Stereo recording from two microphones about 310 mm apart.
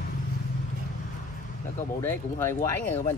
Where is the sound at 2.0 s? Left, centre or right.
Centre.